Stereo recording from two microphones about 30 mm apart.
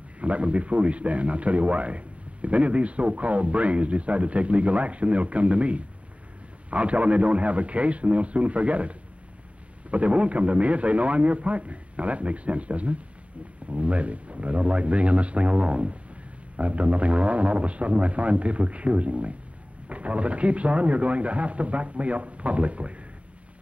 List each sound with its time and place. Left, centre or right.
0.2 s a man's voice: right